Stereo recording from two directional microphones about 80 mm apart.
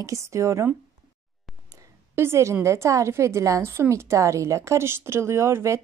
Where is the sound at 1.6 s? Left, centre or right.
Right.